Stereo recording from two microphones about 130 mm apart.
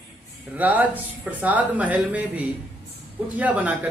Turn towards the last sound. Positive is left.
turn(degrees=-10)  # may be behind; listen again after turning